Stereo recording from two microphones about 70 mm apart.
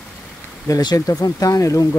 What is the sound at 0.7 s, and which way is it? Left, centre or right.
Speech, left.